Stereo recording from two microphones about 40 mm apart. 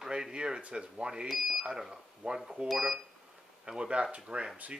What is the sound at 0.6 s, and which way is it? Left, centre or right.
Speech, right.